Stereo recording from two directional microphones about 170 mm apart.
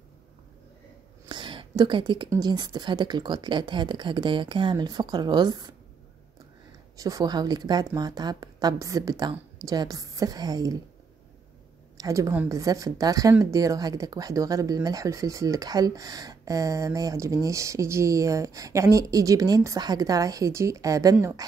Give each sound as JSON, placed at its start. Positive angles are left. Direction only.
{"t": 1.3, "sound": "speech", "side_deg": -25}
{"t": 7.0, "sound": "speech", "side_deg": -20}
{"t": 12.0, "sound": "speech", "side_deg": -20}